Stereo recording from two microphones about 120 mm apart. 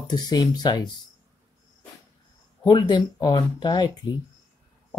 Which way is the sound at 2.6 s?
35° left (ahead or behind).